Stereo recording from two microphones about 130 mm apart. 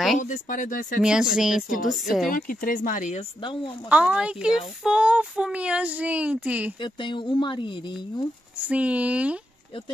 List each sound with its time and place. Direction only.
0.2 s speech: 80° left
1.0 s speech: 5° right (ahead or behind)
2.2 s speech: 90° left
3.2 s speech: 40° left (ahead or behind)
3.9 s speech: 10° right (ahead or behind)
6.8 s speech: 40° left (ahead or behind)
8.6 s speech: 10° right (ahead or behind)